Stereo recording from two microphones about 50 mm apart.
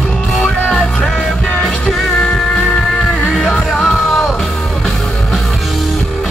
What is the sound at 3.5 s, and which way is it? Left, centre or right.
Music, left.